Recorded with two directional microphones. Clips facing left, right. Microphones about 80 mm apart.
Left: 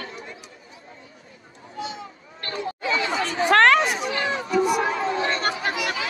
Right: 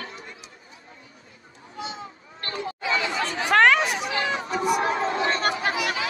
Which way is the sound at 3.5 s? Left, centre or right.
Centre.